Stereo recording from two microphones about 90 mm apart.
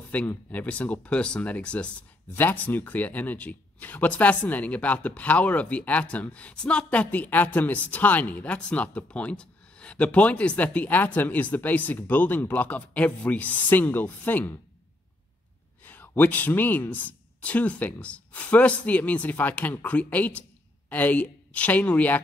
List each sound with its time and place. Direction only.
0.1 s speech: 15° left (ahead or behind)
15.8 s speech: 20° left (ahead or behind)